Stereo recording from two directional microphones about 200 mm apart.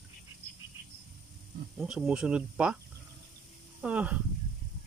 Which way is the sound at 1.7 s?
5° right (ahead or behind).